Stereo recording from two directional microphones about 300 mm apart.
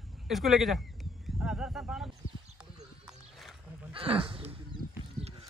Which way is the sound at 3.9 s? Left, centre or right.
Centre.